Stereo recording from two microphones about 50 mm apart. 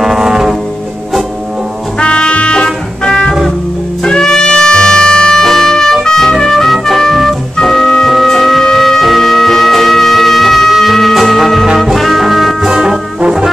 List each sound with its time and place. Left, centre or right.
0.0 s music: centre
2.0 s music: centre
11.8 s trombone: centre